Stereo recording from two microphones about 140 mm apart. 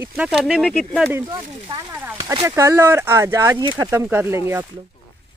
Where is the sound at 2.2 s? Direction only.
25° right (ahead or behind).